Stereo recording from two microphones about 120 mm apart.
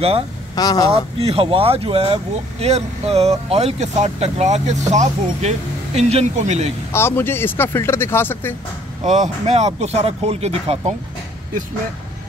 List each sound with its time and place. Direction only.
0.6 s speech: 30° left (ahead or behind)
1.2 s speech: 50° right (ahead or behind); by 6.7 s 70° right (ahead or behind)
6.9 s speech: 20° left (ahead or behind)
9.0 s speech: 75° right (ahead or behind)